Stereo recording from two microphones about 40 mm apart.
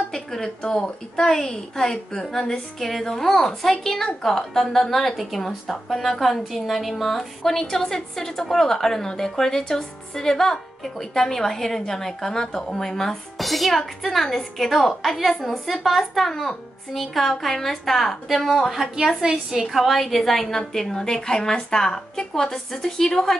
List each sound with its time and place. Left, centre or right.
0.1 s a woman's voice: centre
13.4 s a woman's voice: centre